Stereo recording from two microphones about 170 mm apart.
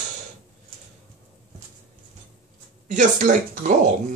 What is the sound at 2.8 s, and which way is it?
Speech, 50° right (ahead or behind).